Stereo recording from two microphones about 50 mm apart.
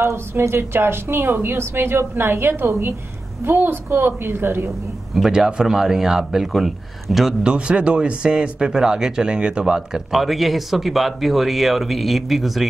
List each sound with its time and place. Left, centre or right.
0.0 s a woman's voice: right
5.1 s speech: centre
7.4 s speech: right
9.8 s speech: centre